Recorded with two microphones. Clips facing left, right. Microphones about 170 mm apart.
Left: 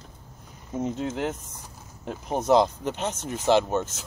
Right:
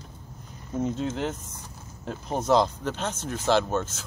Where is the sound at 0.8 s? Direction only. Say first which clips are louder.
Even; 10° left (ahead or behind).